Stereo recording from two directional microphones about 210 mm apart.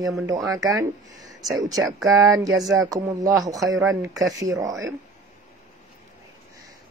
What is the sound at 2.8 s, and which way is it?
Female singing, 15° right (ahead or behind).